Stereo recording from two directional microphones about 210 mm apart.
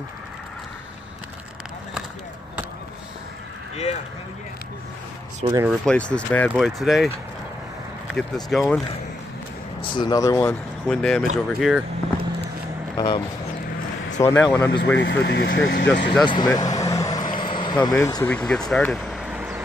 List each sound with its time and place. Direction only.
3.7 s speech: 30° left (ahead or behind)
5.7 s speech: 5° left (ahead or behind)
8.5 s speech: centre (ahead or behind)
9.9 s speech: 20° left (ahead or behind)
10.9 s speech: 5° left (ahead or behind)
12.9 s speech: 20° left (ahead or behind)
15.0 s speech: 55° left (ahead or behind)
16.1 s vehicle: 20° left (ahead or behind); by 19.6 s 10° right (ahead or behind)